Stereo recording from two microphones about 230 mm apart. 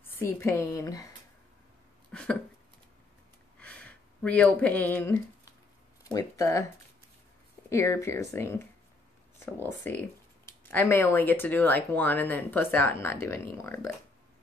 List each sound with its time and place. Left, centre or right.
0.0 s speech: centre
3.5 s a sound: centre
6.1 s speech: centre
7.7 s speech: centre
9.7 s speech: centre